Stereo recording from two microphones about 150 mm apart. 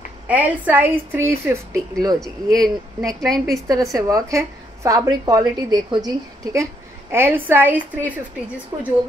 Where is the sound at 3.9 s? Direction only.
20° right (ahead or behind).